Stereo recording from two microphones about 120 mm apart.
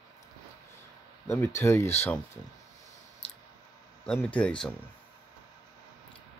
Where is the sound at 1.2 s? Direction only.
15° left (ahead or behind).